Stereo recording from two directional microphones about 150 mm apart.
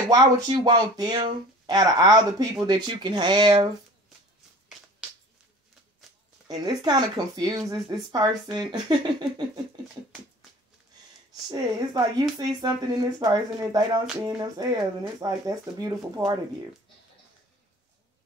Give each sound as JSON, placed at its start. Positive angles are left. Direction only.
{"t": 0.1, "sound": "speech", "side_deg": -30}
{"t": 6.4, "sound": "speech", "side_deg": -25}
{"t": 11.5, "sound": "speech", "side_deg": -25}